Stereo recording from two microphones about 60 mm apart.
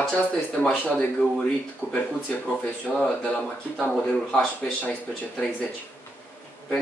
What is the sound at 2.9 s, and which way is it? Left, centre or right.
Speech, left.